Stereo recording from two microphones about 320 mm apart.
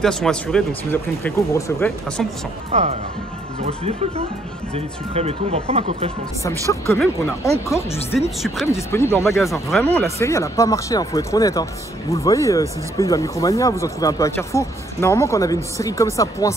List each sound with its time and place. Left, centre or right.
0.0 s speech: centre
2.7 s speech: right
4.7 s speech: centre
6.7 s speech: centre